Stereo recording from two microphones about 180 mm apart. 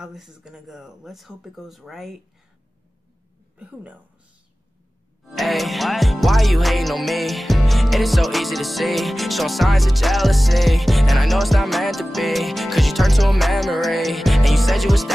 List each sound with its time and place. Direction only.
0.0 s music: 5° right (ahead or behind)
3.5 s a woman's voice: 5° right (ahead or behind)
5.3 s music: centre (ahead or behind)